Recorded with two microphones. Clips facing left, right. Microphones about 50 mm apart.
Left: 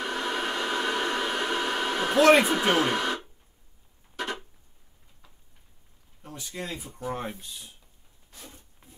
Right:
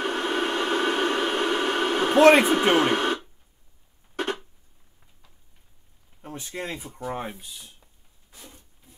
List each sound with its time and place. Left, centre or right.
0.0 s a sound: right
6.2 s speech: right
7.1 s speech: centre